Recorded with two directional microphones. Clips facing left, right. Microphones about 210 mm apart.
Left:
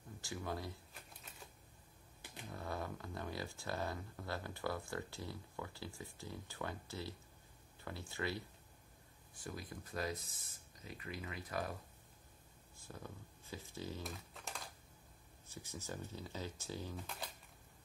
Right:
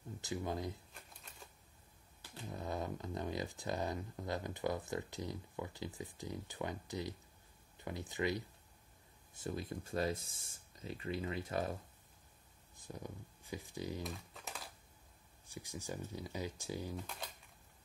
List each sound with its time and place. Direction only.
0.2 s speech: 20° right (ahead or behind)
0.9 s typewriter: 5° left (ahead or behind)
2.5 s speech: 20° right (ahead or behind)
12.7 s speech: 15° right (ahead or behind)
14.0 s typing: centre (ahead or behind)
15.4 s speech: 15° right (ahead or behind)
16.9 s speech: centre (ahead or behind)